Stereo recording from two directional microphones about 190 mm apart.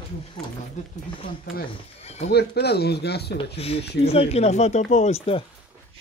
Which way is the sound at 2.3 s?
60° left (ahead or behind).